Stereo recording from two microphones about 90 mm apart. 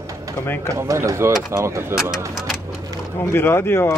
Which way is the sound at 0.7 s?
35° right (ahead or behind).